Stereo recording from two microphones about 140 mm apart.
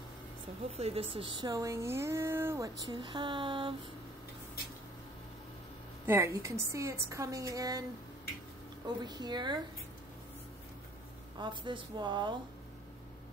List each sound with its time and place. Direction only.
0.7 s speech: 45° right (ahead or behind)
6.0 s speech: 20° right (ahead or behind)
8.8 s a woman's voice: 30° right (ahead or behind)
11.3 s a woman's voice: 35° right (ahead or behind)